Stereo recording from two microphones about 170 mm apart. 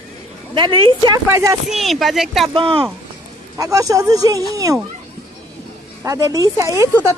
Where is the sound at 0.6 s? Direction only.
25° right (ahead or behind).